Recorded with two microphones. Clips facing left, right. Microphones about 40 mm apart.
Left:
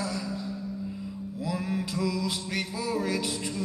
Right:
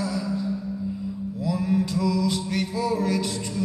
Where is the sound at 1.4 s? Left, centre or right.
Centre.